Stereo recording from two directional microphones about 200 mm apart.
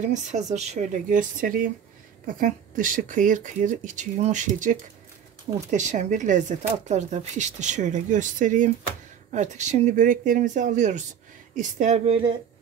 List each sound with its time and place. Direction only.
0.0 s speech: 35° right (ahead or behind)